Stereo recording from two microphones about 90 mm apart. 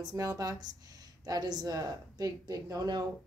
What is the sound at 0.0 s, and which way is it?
A woman's voice, 40° right (ahead or behind).